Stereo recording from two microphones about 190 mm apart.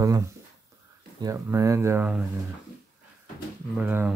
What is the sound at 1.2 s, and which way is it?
Speech, 15° right (ahead or behind).